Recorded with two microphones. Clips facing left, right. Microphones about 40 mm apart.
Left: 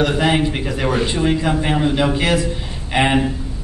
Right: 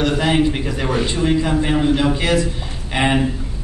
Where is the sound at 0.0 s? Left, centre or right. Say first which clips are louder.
Even; centre.